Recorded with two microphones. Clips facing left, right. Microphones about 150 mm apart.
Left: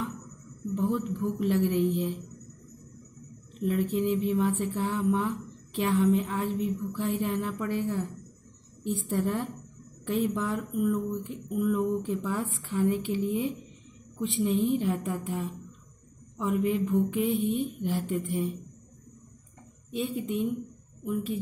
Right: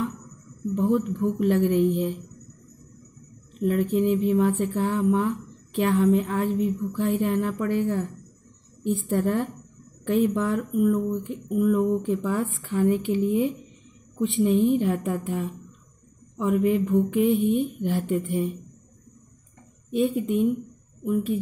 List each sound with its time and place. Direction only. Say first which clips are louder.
0.7 s speech: right 6 dB; 55° right (ahead or behind)
3.6 s speech: right 5 dB; 55° right (ahead or behind)
19.9 s speech: right 7 dB; 55° right (ahead or behind)